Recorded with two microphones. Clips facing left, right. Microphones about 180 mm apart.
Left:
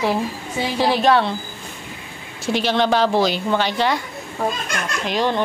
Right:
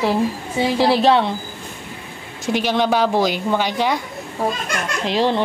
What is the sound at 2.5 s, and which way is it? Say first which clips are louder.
A woman's voice: even; 15° right (ahead or behind).